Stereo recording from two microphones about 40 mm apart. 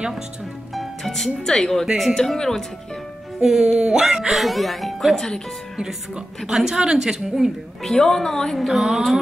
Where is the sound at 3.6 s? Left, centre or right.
Right.